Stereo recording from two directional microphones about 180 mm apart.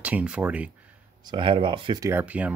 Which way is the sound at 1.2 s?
30° right (ahead or behind).